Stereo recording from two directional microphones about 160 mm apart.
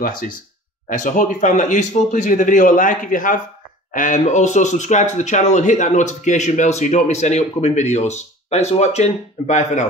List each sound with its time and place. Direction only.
0.0 s a man's voice: 60° left (ahead or behind)